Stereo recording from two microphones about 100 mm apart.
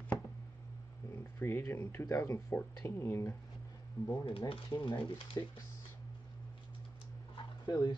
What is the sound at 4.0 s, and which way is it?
Speech, 40° left (ahead or behind).